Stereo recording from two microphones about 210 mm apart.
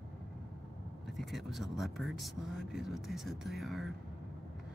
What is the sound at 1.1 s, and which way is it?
Speech, centre (ahead or behind).